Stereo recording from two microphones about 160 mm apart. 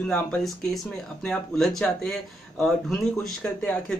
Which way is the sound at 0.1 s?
5° left (ahead or behind).